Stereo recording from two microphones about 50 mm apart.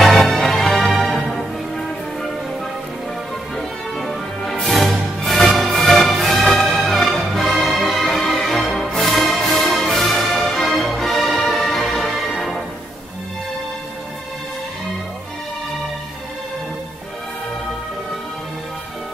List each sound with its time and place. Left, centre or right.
0.0 s music: centre
3.5 s music: centre